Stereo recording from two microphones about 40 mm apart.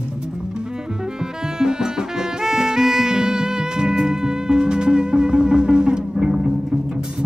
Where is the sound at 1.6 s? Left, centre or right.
Centre.